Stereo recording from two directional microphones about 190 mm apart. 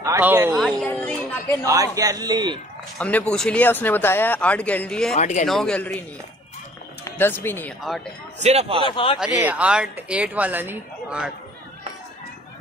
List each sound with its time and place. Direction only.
0.0 s speech: 15° right (ahead or behind)
0.6 s speech: 5° left (ahead or behind)
1.7 s a man's voice: 20° right (ahead or behind)
3.0 s speech: 5° left (ahead or behind)
5.1 s speech: 40° left (ahead or behind)
5.5 s a man's voice: 5° left (ahead or behind)
7.1 s speech: 10° left (ahead or behind)
8.4 s a man's voice: 35° right (ahead or behind)
8.8 s speech: 25° left (ahead or behind)
9.2 s speech: 5° right (ahead or behind)